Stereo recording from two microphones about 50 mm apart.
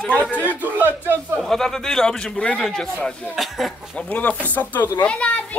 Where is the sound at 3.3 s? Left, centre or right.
Centre.